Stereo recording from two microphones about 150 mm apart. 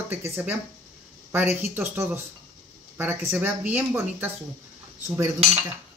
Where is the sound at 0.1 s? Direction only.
15° right (ahead or behind).